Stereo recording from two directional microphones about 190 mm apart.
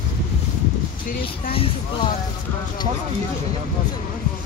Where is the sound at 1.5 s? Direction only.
30° left (ahead or behind).